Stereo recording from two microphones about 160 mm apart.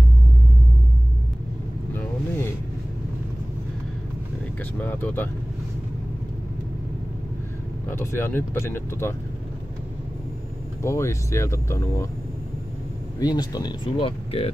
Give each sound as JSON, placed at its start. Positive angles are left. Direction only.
{"t": 4.8, "sound": "speech", "side_deg": 10}
{"t": 7.9, "sound": "speech", "side_deg": 15}
{"t": 10.8, "sound": "speech", "side_deg": 15}
{"t": 13.2, "sound": "speech", "side_deg": 25}